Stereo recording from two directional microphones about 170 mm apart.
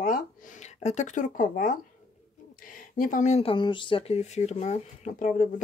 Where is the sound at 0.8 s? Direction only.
45° left (ahead or behind).